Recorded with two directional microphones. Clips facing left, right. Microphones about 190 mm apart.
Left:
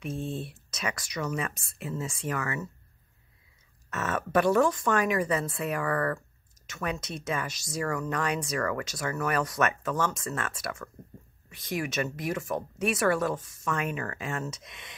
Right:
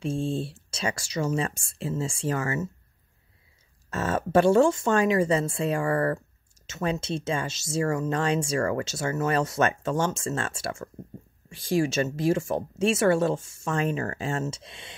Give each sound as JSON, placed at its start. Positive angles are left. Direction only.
{"t": 0.0, "sound": "speech", "side_deg": -30}
{"t": 3.9, "sound": "speech", "side_deg": -30}